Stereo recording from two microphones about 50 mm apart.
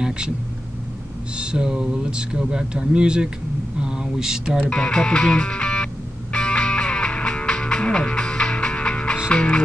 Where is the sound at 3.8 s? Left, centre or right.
Centre.